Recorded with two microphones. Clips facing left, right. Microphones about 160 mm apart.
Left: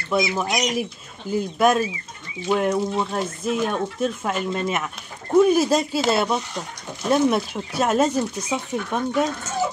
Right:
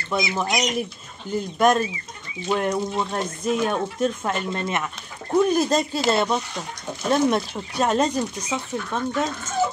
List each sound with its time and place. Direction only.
0.3 s speech: 5° left (ahead or behind)
8.9 s speech: 15° left (ahead or behind)